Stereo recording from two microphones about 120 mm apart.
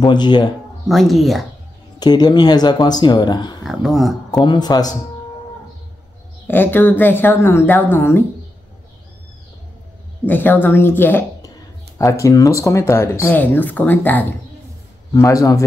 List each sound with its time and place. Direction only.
0.0 s speech: 40° left (ahead or behind)
0.8 s speech: centre (ahead or behind)
2.0 s speech: 35° left (ahead or behind)
3.6 s speech: centre (ahead or behind)
4.5 s speech: 35° left (ahead or behind)
6.4 s speech: 15° left (ahead or behind)
10.2 s speech: 15° left (ahead or behind)
15.1 s speech: 25° left (ahead or behind)